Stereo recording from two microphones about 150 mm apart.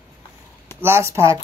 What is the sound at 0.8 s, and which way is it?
Speech, 15° right (ahead or behind).